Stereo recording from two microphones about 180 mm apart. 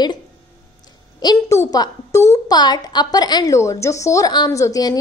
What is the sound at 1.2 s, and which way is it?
A woman's voice, 20° left (ahead or behind).